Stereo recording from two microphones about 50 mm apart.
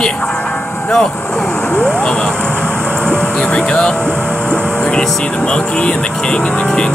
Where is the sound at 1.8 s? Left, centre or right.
Centre.